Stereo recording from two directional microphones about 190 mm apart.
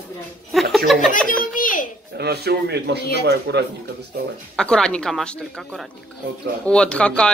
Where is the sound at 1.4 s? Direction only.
45° left (ahead or behind).